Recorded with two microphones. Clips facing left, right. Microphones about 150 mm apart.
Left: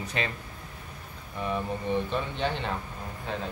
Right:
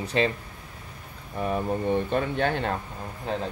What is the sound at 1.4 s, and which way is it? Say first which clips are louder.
Speech: right 4 dB; 45° right (ahead or behind).